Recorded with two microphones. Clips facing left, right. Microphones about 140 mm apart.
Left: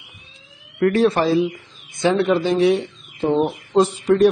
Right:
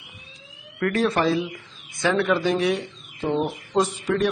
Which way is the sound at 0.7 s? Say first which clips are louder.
Left 6 dB; 25° left (ahead or behind).